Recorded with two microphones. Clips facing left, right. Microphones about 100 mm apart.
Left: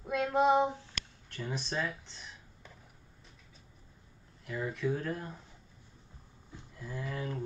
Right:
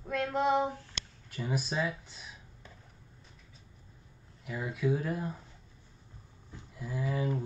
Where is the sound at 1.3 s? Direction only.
5° right (ahead or behind).